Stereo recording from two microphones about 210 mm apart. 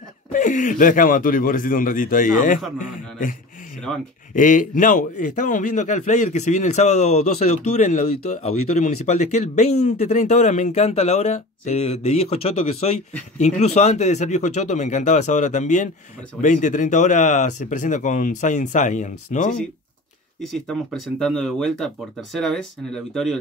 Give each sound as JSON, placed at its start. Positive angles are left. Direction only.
{"t": 0.3, "sound": "speech", "side_deg": 40}
{"t": 4.4, "sound": "speech", "side_deg": 40}
{"t": 20.4, "sound": "speech", "side_deg": 0}